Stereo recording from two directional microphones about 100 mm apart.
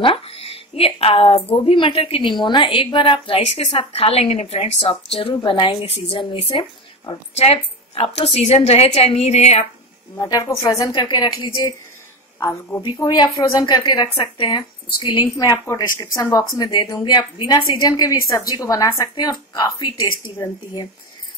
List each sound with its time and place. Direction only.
0.0 s a woman's voice: 75° left (ahead or behind)
5.3 s a woman's voice: 55° left (ahead or behind)
7.3 s a woman's voice: 90° left
10.1 s a woman's voice: 40° left (ahead or behind)
10.9 s speech: 50° left (ahead or behind)
13.1 s speech: 40° left (ahead or behind)
15.2 s a woman's voice: 35° left (ahead or behind); by 20.2 s 50° left (ahead or behind)